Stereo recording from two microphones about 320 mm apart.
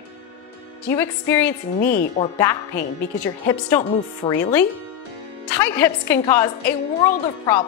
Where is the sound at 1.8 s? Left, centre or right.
Left.